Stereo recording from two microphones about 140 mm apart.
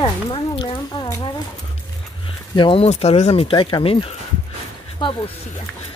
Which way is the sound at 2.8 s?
50° left (ahead or behind).